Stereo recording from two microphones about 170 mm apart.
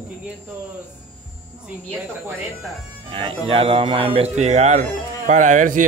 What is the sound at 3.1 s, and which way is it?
Speech, 30° right (ahead or behind).